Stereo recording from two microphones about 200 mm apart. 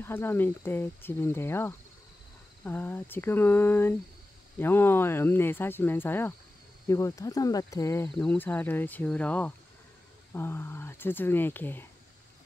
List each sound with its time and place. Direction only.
0.0 s speech: 10° left (ahead or behind)